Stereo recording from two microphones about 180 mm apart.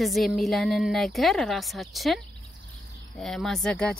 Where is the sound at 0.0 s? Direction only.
Centre (ahead or behind).